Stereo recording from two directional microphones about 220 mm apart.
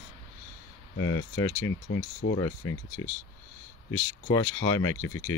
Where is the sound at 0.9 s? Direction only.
65° left (ahead or behind).